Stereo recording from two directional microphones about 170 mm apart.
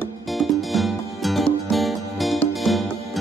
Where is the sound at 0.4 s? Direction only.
Centre (ahead or behind).